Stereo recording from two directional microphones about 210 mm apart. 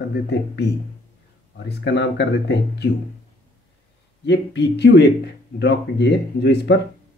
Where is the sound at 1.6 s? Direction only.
55° left (ahead or behind).